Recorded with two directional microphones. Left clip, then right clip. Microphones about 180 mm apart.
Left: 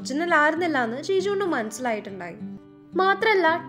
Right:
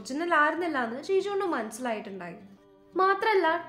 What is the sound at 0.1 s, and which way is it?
A woman's voice, 35° left (ahead or behind).